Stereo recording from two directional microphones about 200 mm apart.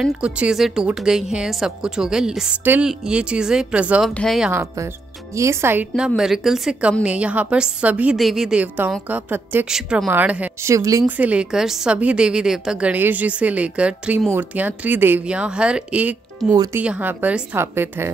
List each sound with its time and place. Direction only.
0.0 s a woman's voice: 5° right (ahead or behind)
4.5 s a woman's voice: 15° right (ahead or behind)